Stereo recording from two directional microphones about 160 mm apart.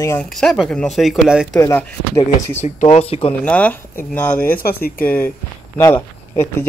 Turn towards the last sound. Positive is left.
turn(degrees=15)  # may be behind; listen again after turning